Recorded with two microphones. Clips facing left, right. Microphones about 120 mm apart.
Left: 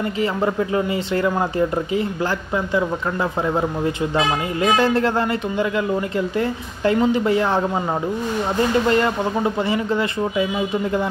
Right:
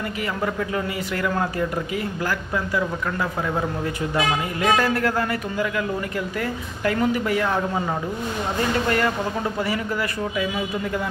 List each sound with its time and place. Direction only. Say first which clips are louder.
0.2 s speech: left 5 dB; 25° left (ahead or behind)
4.6 s speech: left 4 dB; 25° left (ahead or behind)
8.8 s speech: left 4 dB; 25° left (ahead or behind)